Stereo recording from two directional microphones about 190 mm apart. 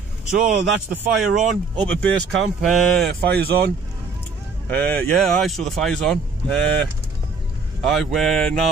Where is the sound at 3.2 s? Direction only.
55° right (ahead or behind).